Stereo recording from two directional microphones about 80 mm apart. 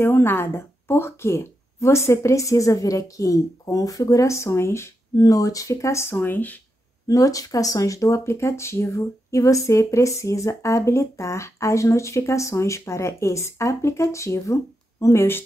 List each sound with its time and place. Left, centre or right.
0.0 s speech: left
5.1 s speech: left
7.1 s speech: left